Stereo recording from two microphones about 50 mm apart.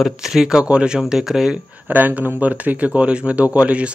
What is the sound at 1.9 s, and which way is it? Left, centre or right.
Speech, right.